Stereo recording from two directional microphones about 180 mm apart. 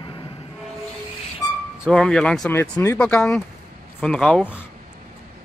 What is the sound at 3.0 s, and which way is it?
Speech, 5° left (ahead or behind).